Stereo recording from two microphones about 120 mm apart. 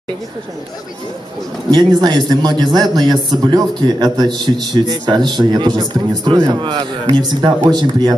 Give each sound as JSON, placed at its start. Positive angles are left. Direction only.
{"t": 1.7, "sound": "a man's voice", "side_deg": -40}